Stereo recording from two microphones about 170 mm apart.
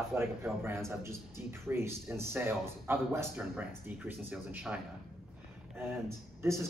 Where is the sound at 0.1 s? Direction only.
15° right (ahead or behind).